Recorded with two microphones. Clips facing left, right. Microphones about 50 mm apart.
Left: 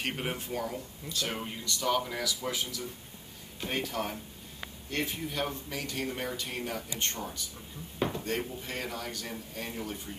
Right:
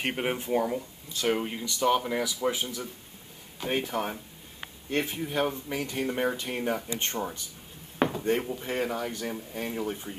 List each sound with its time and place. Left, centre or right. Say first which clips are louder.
0.0 s speech: right 5 dB; right